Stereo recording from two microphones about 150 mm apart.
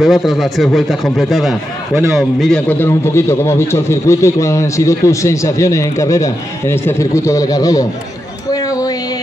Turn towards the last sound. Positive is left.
turn(degrees=25)  # may be behind; listen again after turning